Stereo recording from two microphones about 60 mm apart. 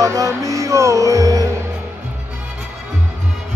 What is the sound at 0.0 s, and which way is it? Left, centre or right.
Music, right.